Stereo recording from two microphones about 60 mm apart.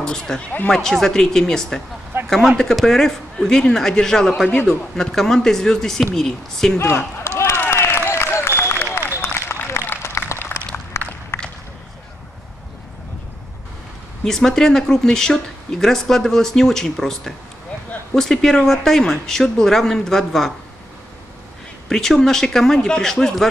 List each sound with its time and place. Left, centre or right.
0.0 s speech: centre
4.5 s a man's voice: left
4.9 s speech: centre
7.2 s a sound: left
14.2 s speech: centre
21.8 s speech: centre